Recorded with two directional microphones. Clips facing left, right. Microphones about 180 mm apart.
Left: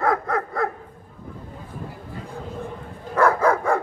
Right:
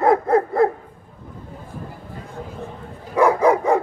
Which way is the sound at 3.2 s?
15° right (ahead or behind).